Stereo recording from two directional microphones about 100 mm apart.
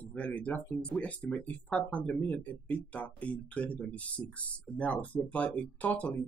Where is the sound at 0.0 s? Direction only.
15° left (ahead or behind).